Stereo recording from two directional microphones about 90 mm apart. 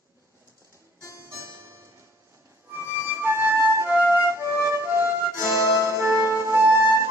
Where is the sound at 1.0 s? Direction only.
35° left (ahead or behind).